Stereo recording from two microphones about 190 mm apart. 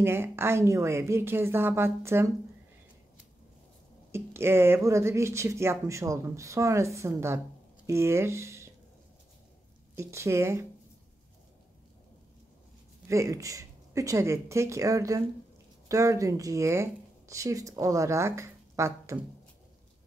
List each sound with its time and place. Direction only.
0.0 s speech: 10° right (ahead or behind)
4.1 s speech: 10° right (ahead or behind)
9.9 s speech: 15° right (ahead or behind)
13.1 s speech: 15° right (ahead or behind)